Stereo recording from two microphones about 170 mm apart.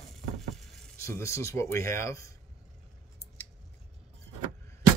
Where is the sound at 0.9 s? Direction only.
15° left (ahead or behind).